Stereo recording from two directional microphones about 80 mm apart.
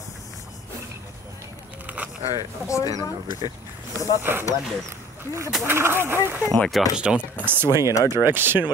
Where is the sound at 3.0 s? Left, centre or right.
Left.